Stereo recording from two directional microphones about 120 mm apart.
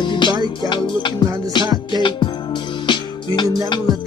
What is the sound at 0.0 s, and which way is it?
Music, 40° left (ahead or behind).